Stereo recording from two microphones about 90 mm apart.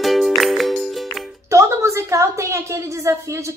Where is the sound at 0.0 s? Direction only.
Centre (ahead or behind).